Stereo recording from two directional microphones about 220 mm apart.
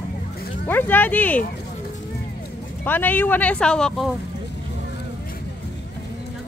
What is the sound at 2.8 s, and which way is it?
Speech, 10° left (ahead or behind).